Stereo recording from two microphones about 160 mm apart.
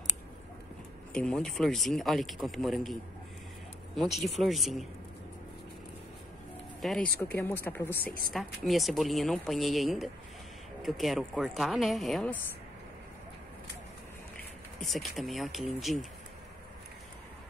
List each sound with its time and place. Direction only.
1.1 s a man's voice: 5° left (ahead or behind)
6.8 s speech: centre (ahead or behind)
7.2 s speech: 15° left (ahead or behind)
8.3 s a man's voice: centre (ahead or behind)
14.8 s a man's voice: centre (ahead or behind)